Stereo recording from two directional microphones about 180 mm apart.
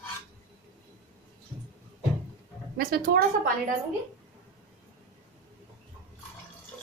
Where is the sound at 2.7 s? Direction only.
55° right (ahead or behind).